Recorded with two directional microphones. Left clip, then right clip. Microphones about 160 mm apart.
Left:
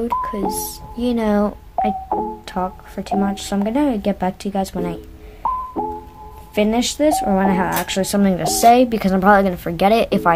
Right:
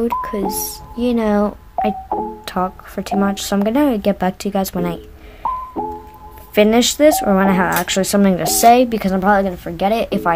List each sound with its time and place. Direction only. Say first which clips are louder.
0.0 s a woman's voice: right 1 dB; 20° right (ahead or behind)
5.8 s music: even; centre (ahead or behind)
6.5 s speech: right 6 dB; 30° right (ahead or behind); by 10.3 s 10° left (ahead or behind)